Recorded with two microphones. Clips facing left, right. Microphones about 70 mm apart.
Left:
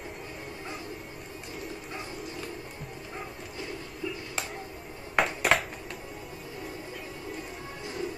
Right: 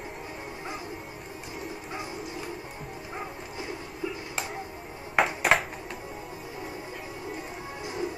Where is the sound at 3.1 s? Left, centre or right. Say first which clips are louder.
Right 3 dB; centre.